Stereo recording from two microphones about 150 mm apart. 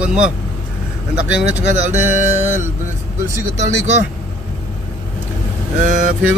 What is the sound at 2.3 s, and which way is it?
Speech, 15° right (ahead or behind).